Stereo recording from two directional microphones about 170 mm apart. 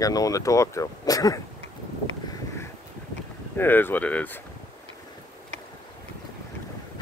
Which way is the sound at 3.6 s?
10° left (ahead or behind).